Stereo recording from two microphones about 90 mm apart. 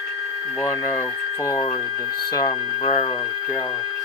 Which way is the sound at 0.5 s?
30° left (ahead or behind).